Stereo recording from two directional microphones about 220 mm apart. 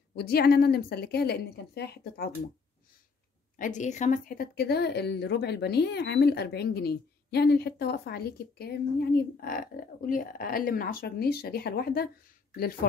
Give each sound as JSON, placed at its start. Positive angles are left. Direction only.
{"t": 0.1, "sound": "speech", "side_deg": 45}
{"t": 3.5, "sound": "speech", "side_deg": 35}